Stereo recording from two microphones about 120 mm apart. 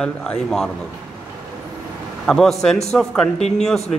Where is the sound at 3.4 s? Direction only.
65° left (ahead or behind).